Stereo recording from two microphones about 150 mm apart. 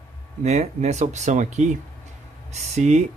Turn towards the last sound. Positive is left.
turn(degrees=-50)  # may be behind; listen again after turning